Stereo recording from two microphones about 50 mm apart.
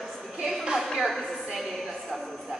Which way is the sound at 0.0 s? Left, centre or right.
Centre.